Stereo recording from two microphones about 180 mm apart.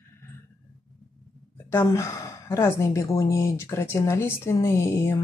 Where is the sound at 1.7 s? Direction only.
15° left (ahead or behind).